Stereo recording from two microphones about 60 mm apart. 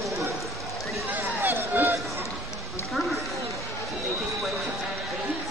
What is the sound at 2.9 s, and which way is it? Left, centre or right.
Run, centre.